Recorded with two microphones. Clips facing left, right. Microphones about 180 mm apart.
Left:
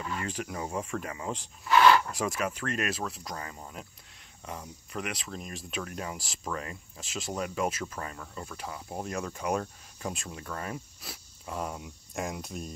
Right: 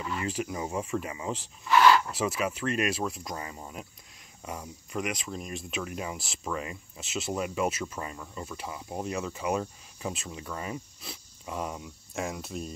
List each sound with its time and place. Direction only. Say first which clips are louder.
0.0 s speech: right 3 dB; 5° right (ahead or behind)